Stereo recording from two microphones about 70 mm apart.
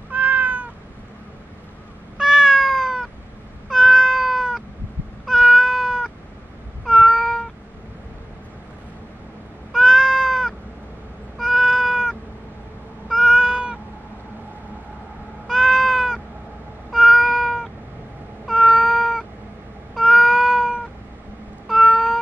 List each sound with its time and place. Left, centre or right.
0.1 s cat: right
2.1 s cat: centre
6.9 s meow: centre
9.7 s cat: centre
15.4 s cat: centre